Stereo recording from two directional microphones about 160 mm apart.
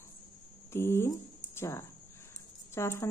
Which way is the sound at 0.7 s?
15° left (ahead or behind).